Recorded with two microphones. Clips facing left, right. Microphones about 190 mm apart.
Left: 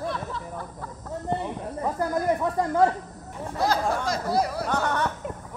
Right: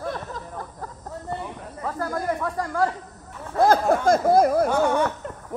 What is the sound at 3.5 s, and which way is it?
Speech, 50° right (ahead or behind).